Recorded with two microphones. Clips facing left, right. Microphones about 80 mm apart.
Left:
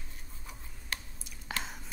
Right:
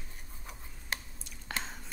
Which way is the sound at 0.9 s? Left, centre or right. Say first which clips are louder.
Right 2 dB; right.